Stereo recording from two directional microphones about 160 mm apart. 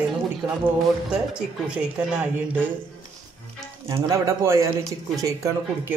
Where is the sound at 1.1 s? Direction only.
5° right (ahead or behind).